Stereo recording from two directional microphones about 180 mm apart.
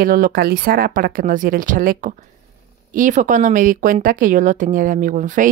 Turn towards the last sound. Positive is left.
turn(degrees=-45)  # may be behind; listen again after turning